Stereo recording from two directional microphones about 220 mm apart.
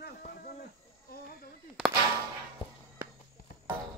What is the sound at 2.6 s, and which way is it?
Walk, 25° left (ahead or behind).